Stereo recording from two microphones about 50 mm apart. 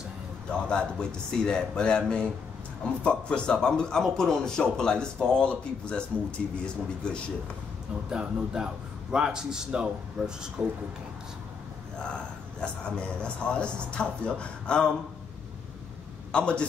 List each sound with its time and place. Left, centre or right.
0.7 s speech: centre
8.1 s a man's voice: centre
10.6 s speech: right
13.2 s speech: left
16.3 s a man's voice: left